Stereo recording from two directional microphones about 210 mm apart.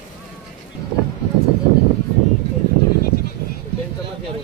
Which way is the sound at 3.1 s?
90° left.